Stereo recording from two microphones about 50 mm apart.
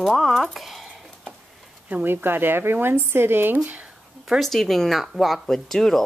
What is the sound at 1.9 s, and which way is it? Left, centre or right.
Speech, right.